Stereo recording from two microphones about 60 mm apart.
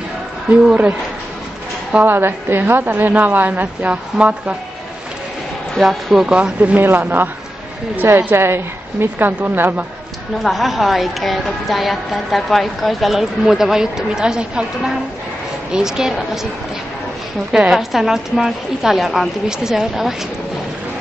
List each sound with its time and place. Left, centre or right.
0.5 s a woman's voice: right
2.0 s a woman's voice: right
5.8 s a woman's voice: centre
6.2 s a woman's voice: centre
6.8 s a woman's voice: right
10.4 s a woman's voice: centre
15.7 s a woman's voice: centre
17.5 s a woman's voice: centre